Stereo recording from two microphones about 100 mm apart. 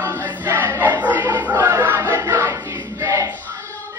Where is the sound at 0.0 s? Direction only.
20° right (ahead or behind).